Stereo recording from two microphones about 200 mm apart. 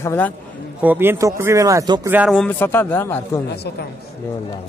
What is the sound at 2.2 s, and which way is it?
Speech, 5° left (ahead or behind).